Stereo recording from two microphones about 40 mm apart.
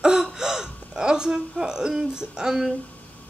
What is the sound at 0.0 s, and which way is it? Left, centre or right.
Gasp, centre.